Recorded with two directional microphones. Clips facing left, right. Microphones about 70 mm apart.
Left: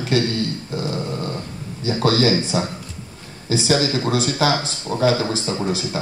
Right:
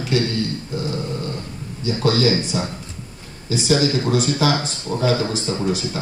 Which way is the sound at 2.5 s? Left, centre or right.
Left.